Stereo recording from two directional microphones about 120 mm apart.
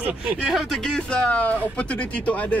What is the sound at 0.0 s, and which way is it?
Speech, 10° right (ahead or behind).